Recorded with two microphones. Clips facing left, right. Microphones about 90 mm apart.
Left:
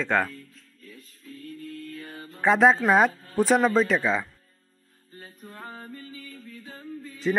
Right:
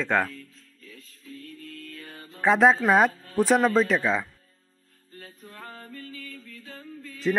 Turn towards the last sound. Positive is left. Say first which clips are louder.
# left 3 dB
turn(degrees=10)  # may be behind; listen again after turning